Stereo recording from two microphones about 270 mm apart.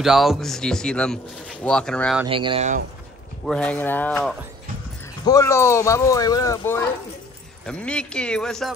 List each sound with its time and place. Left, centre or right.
0.0 s a man's voice: centre
2.2 s speech: centre
3.4 s a man's voice: centre